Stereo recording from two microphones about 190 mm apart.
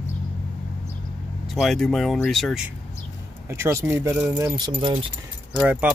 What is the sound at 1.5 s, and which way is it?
Speech, centre (ahead or behind).